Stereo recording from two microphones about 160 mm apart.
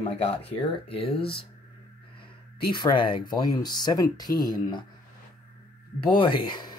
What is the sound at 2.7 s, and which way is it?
Speech, 30° left (ahead or behind).